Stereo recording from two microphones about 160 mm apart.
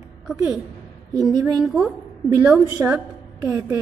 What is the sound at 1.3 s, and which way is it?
Speech, 25° right (ahead or behind).